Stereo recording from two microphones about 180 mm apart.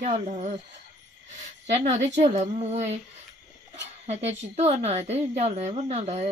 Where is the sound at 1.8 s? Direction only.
40° right (ahead or behind).